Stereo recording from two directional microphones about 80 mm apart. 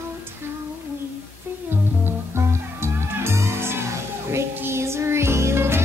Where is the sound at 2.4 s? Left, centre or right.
Right.